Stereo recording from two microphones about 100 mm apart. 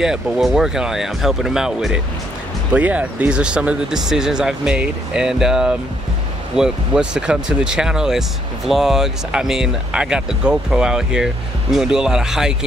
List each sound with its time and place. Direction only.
0.0 s speech: 5° right (ahead or behind)